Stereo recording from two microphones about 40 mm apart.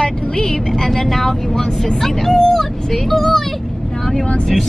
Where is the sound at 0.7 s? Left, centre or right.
Centre.